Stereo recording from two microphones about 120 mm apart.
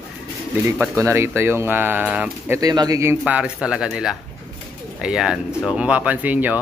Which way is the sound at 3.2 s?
10° right (ahead or behind).